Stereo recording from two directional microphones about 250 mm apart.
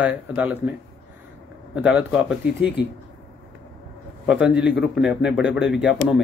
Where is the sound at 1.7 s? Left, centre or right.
Centre.